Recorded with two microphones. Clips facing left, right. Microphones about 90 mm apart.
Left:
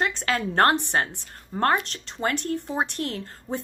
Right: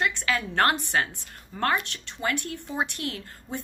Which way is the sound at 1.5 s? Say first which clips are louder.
Left 4 dB; 40° left (ahead or behind).